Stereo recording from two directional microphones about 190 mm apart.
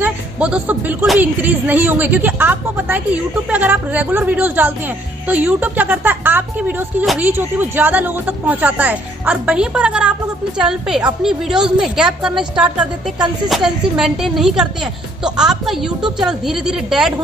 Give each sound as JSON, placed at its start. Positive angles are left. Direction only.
{"t": 0.0, "sound": "a woman's voice", "side_deg": -5}